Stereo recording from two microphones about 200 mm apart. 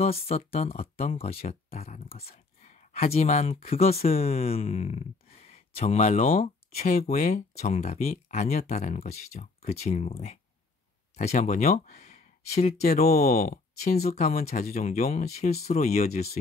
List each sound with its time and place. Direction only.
0.0 s speech: 30° left (ahead or behind)
13.1 s speech: 45° left (ahead or behind)